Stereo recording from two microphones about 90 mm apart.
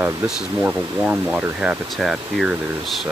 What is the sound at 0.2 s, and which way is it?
Speech, 20° right (ahead or behind).